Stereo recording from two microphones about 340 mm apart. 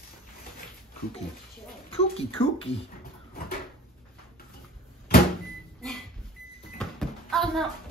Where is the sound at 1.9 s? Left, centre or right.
Centre.